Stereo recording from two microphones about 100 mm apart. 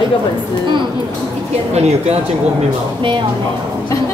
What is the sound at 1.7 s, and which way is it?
Speech, 90° right.